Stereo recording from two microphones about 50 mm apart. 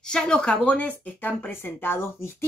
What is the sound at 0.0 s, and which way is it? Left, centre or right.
Speech, centre.